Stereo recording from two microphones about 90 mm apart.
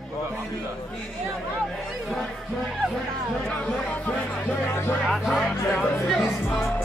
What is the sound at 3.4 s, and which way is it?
Music, 10° left (ahead or behind).